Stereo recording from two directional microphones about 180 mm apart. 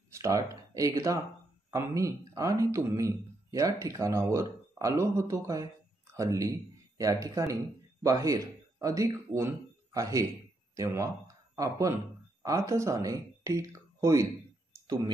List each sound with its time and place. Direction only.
0.1 s speech: 20° right (ahead or behind)